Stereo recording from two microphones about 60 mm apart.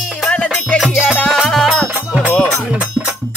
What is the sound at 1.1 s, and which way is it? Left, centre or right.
Music, centre.